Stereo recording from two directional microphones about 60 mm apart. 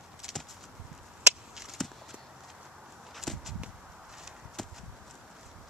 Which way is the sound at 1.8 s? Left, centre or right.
Centre.